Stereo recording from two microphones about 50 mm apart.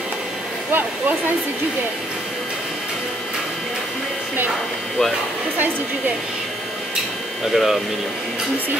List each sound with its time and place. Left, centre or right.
0.7 s speech: right
7.5 s speech: centre